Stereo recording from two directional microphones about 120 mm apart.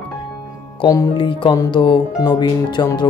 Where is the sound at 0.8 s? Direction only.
30° left (ahead or behind).